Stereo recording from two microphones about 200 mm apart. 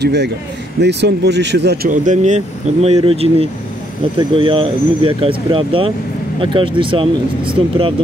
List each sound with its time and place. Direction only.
0.0 s speech: 55° right (ahead or behind); by 7.9 s 25° right (ahead or behind)